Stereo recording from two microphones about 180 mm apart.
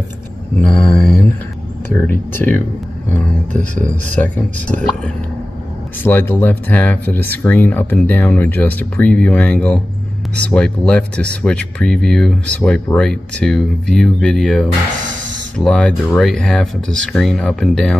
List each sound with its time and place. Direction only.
0.6 s speech: 5° left (ahead or behind)
3.7 s speech: 45° right (ahead or behind)
4.1 s speech: 10° left (ahead or behind)
6.0 s speech: 10° left (ahead or behind)